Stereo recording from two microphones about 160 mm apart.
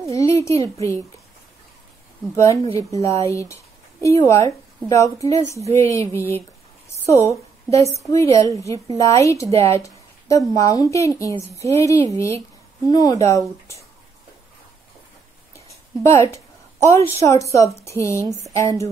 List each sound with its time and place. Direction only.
0.1 s a child's voice: 20° left (ahead or behind)
2.3 s a woman's voice: 20° left (ahead or behind)
16.0 s a woman's voice: 15° left (ahead or behind)